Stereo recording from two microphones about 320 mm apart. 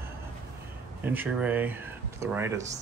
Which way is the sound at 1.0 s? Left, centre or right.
Centre.